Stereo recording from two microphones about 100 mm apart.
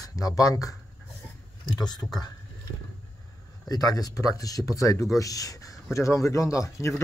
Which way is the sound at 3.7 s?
40° left (ahead or behind).